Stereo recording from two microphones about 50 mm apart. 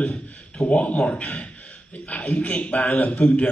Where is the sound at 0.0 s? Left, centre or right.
Left.